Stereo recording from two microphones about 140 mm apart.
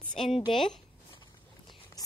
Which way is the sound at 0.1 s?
Centre (ahead or behind).